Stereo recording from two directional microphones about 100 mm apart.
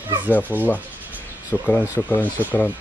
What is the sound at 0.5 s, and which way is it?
Speech, 20° right (ahead or behind).